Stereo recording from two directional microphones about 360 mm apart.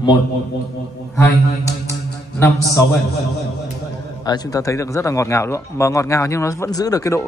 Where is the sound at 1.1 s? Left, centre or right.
Centre.